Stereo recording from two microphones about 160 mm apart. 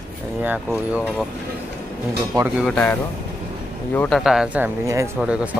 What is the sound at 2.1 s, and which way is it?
Speech, 20° right (ahead or behind).